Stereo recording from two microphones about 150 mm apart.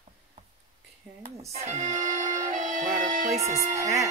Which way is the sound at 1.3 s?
50° right (ahead or behind).